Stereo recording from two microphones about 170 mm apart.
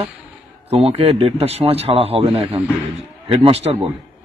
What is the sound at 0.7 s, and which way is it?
A man's voice, 35° right (ahead or behind).